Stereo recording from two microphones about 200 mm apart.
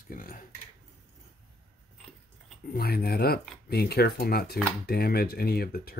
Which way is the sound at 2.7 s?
50° left (ahead or behind).